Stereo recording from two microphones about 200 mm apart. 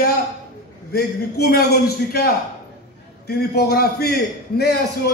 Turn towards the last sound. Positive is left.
turn(degrees=55)  # may be behind; listen again after turning